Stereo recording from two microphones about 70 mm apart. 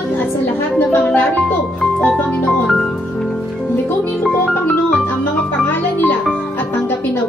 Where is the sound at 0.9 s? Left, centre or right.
Left.